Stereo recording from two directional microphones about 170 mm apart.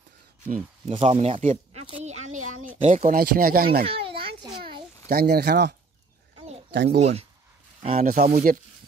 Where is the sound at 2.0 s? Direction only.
45° right (ahead or behind); by 3.8 s 60° right (ahead or behind).